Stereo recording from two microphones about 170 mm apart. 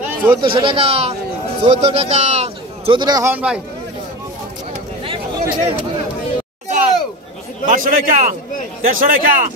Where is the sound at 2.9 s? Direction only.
20° right (ahead or behind).